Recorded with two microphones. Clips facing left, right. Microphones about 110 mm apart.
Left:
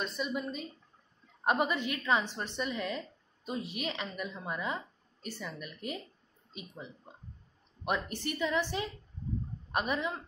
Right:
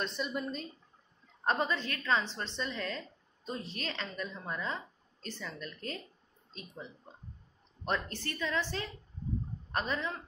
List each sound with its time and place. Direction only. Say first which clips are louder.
0.0 s a woman's voice: left 1 dB; centre (ahead or behind)